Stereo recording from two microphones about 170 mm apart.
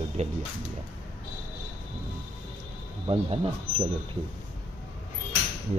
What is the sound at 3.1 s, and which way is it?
Speech, 35° right (ahead or behind).